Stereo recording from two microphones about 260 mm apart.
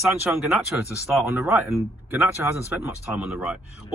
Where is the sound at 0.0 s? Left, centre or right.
Centre.